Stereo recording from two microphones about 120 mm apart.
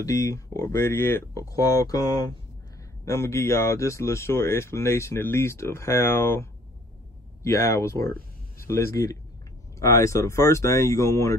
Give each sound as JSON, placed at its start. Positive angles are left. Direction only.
{"t": 0.0, "sound": "speech", "side_deg": 25}